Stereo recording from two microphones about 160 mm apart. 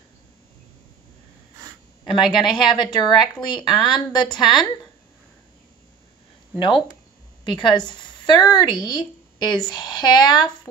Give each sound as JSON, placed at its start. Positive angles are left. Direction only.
{"t": 2.3, "sound": "a woman's voice", "side_deg": 30}
{"t": 3.6, "sound": "speech", "side_deg": 0}
{"t": 4.1, "sound": "a woman's voice", "side_deg": 30}
{"t": 4.4, "sound": "speech", "side_deg": 0}
{"t": 6.6, "sound": "a woman's voice", "side_deg": 30}